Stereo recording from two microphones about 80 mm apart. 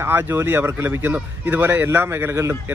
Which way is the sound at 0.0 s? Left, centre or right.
Right.